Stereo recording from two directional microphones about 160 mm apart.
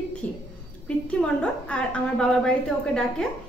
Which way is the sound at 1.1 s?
5° left (ahead or behind).